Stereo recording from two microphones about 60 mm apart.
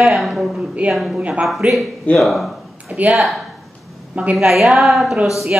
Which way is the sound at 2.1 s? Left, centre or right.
Centre.